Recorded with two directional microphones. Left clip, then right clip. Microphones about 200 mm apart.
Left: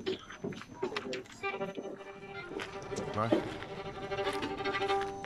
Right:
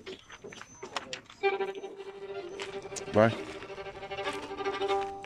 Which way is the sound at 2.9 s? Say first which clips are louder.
Right 10 dB; 45° right (ahead or behind).